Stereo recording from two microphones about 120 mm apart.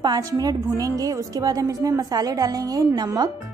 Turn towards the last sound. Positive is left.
turn(degrees=-30)  # may be behind; listen again after turning